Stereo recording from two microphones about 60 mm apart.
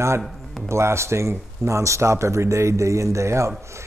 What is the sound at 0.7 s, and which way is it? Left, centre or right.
Speech, right.